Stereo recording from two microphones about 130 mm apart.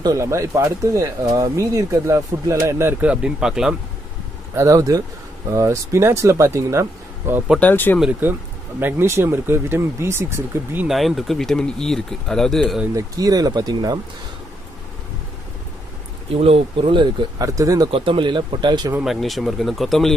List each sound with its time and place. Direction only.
0.0 s speech: 25° right (ahead or behind); by 3.7 s 5° right (ahead or behind)
4.6 s speech: 25° right (ahead or behind)
7.5 s speech: 15° left (ahead or behind)
8.0 s speech: 10° right (ahead or behind)
10.9 s speech: centre (ahead or behind)
12.9 s speech: 30° right (ahead or behind)
16.3 s speech: 50° right (ahead or behind); by 17.8 s 25° right (ahead or behind)
17.9 s speech: 40° right (ahead or behind)
19.0 s speech: centre (ahead or behind)